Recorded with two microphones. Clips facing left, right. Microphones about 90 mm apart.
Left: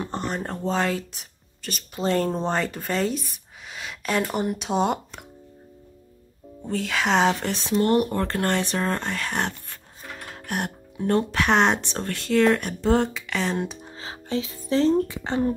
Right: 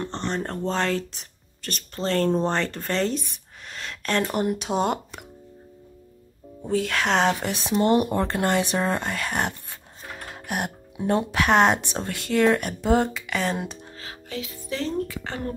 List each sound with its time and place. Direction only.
0.0 s speech: 10° left (ahead or behind)
2.0 s speech: 15° left (ahead or behind)
2.3 s speech: centre (ahead or behind)
6.6 s speech: centre (ahead or behind)
7.8 s speech: 20° right (ahead or behind); by 9.5 s 5° right (ahead or behind)
10.1 s music: 5° right (ahead or behind)
11.3 s speech: 5° right (ahead or behind)
13.9 s music: 25° left (ahead or behind)
14.7 s speech: 30° left (ahead or behind)
15.2 s speech: 20° left (ahead or behind)